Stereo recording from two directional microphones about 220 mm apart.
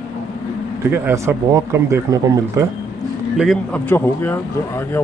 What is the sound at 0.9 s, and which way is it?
Speech, 10° right (ahead or behind).